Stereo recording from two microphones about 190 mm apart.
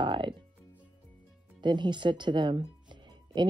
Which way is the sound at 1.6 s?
25° right (ahead or behind).